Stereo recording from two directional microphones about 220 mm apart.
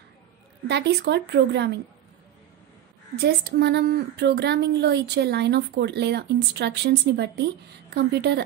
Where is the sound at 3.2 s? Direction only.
50° right (ahead or behind).